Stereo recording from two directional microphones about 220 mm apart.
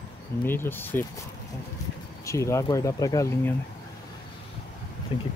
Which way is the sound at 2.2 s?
15° left (ahead or behind).